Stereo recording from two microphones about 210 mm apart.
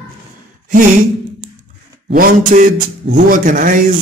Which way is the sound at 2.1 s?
40° right (ahead or behind).